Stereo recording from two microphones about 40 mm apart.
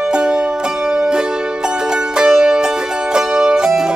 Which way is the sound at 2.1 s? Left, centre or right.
Centre.